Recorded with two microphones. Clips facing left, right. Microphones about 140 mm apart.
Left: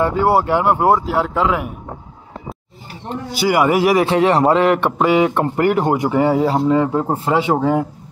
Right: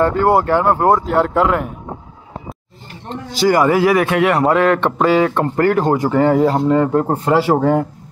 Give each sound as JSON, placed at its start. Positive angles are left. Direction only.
{"t": 0.0, "sound": "speech", "side_deg": 10}
{"t": 3.1, "sound": "speech", "side_deg": 10}